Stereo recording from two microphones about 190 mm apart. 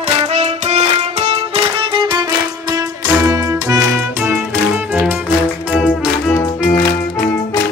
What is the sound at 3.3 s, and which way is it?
Music, 20° right (ahead or behind).